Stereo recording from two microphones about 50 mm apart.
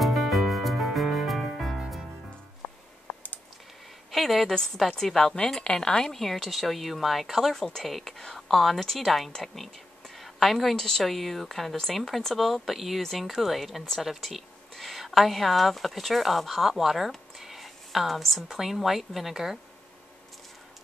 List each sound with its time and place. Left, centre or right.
0.0 s music: centre
2.6 s music: left
4.1 s a woman's voice: centre
4.9 s a woman's voice: centre